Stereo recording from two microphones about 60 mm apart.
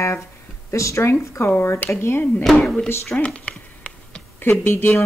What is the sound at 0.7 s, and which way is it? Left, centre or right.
Speech, left.